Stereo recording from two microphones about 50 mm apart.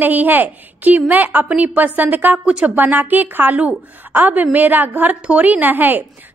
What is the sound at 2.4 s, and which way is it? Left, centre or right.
Speech, right.